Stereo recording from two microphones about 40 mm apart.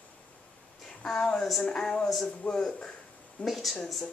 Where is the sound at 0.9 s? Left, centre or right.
Centre.